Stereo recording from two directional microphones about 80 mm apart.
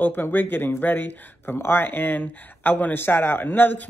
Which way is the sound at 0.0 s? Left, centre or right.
Left.